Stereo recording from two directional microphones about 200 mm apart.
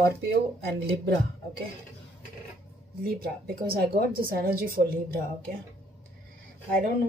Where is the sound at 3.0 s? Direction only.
50° right (ahead or behind).